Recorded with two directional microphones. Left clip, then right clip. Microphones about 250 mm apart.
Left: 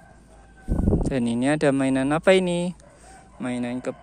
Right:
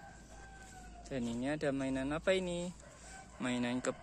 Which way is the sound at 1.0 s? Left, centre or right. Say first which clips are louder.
Left 15 dB; left.